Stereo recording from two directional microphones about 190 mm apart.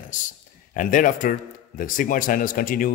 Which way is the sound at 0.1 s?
40° left (ahead or behind).